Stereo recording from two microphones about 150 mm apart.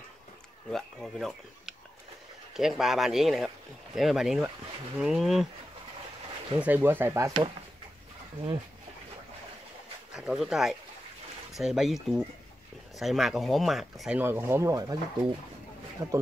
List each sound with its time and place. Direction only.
0.7 s speech: 5° left (ahead or behind)
6.6 s speech: 15° right (ahead or behind)
10.1 s speech: 5° right (ahead or behind)
14.2 s speech: 15° right (ahead or behind)